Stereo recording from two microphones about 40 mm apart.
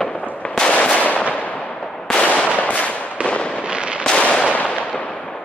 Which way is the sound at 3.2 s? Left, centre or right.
Left.